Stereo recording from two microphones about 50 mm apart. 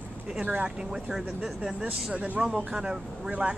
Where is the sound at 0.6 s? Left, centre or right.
Centre.